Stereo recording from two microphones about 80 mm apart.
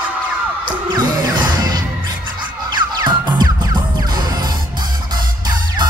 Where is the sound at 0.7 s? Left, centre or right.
Right.